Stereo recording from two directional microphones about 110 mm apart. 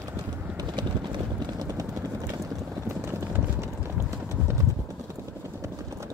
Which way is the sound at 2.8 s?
25° right (ahead or behind).